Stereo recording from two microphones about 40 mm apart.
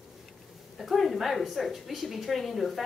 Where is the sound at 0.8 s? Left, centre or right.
Centre.